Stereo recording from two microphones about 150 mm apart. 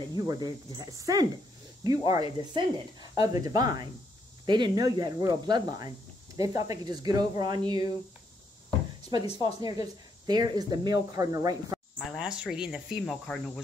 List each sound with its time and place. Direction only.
0.1 s speech: 25° right (ahead or behind)
9.1 s speech: 30° right (ahead or behind)
12.0 s speech: centre (ahead or behind)